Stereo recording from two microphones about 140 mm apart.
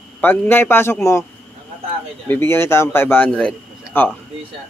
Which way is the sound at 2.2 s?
15° left (ahead or behind).